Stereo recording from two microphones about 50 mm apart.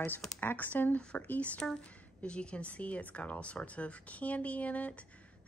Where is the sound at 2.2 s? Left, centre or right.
Left.